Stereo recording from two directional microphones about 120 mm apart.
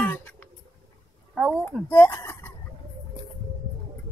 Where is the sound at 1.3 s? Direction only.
5° right (ahead or behind).